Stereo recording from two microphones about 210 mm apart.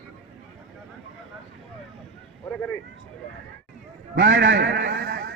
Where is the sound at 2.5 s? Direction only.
10° left (ahead or behind).